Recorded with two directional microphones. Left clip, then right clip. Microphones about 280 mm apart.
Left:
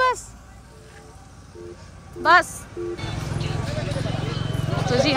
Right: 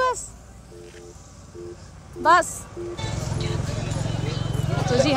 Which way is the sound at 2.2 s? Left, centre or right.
Centre.